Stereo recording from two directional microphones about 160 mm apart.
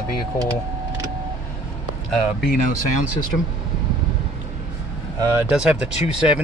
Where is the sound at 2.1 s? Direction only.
Centre (ahead or behind).